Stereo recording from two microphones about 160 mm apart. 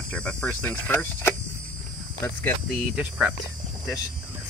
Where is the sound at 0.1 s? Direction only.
5° left (ahead or behind).